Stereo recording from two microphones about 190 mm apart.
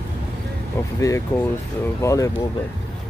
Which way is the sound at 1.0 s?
15° left (ahead or behind).